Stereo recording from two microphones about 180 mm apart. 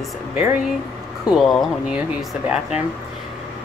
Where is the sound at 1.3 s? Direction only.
Centre (ahead or behind).